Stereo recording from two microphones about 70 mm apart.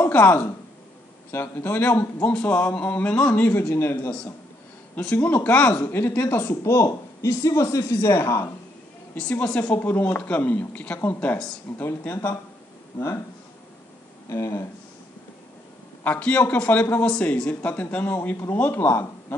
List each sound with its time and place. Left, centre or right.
0.1 s speech: left
1.3 s speech: left
5.1 s speech: left
5.9 s speech: left
6.6 s speech: left
9.3 s speech: left
14.3 s speech: left
16.0 s speech: left